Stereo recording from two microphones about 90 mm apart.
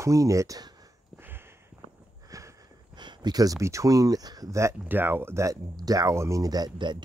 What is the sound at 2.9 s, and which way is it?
Speech, 55° right (ahead or behind).